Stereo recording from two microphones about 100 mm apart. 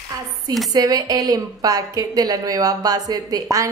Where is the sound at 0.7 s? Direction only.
40° right (ahead or behind).